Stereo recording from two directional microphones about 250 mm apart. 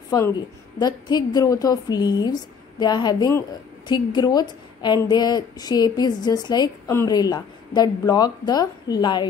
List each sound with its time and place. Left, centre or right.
0.1 s a woman's voice: centre